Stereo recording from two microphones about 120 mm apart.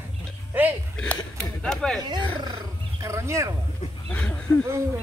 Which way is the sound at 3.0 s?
25° right (ahead or behind).